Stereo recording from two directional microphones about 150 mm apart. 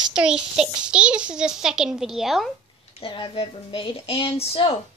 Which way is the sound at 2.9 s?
35° left (ahead or behind).